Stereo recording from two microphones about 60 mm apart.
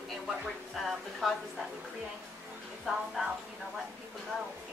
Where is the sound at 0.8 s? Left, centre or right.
Centre.